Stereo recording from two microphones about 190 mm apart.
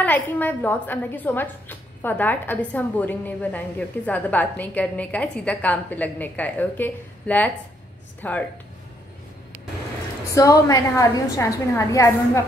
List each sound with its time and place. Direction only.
0.0 s a woman's voice: 10° left (ahead or behind)
10.3 s a woman's voice: 15° left (ahead or behind)